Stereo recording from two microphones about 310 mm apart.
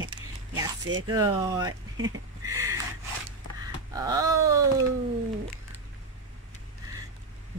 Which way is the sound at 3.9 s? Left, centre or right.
Centre.